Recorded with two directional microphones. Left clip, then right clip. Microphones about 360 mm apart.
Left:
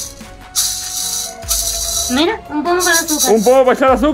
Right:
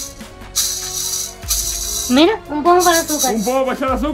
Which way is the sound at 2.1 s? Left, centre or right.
Right.